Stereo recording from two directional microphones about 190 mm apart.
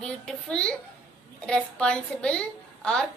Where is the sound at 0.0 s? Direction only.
5° left (ahead or behind).